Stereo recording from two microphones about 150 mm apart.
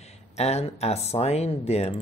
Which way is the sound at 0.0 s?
45° left (ahead or behind).